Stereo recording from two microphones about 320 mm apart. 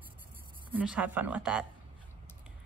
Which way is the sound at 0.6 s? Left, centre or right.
Centre.